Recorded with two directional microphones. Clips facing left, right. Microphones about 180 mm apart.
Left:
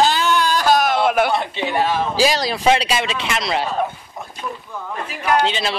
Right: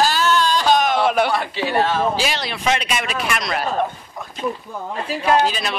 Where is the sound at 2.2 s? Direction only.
35° left (ahead or behind).